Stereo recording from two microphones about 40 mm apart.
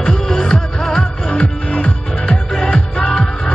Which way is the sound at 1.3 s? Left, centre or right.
Left.